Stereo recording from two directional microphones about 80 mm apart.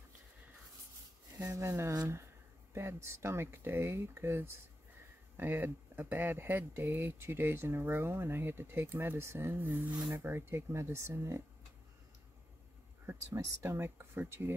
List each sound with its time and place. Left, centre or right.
1.4 s speech: right
13.0 s speech: right